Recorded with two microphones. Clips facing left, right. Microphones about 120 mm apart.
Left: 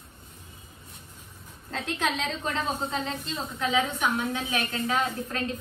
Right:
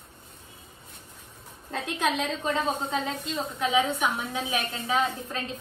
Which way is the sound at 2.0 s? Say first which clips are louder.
Right 3 dB; centre (ahead or behind).